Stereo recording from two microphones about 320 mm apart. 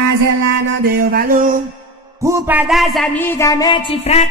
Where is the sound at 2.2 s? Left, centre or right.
Centre.